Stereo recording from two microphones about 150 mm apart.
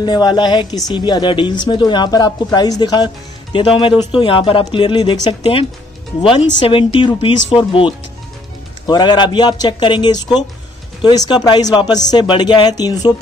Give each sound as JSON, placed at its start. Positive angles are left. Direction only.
{"t": 0.0, "sound": "speech", "side_deg": 30}